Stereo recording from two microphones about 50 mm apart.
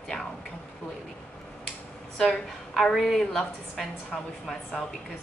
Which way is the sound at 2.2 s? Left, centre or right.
Centre.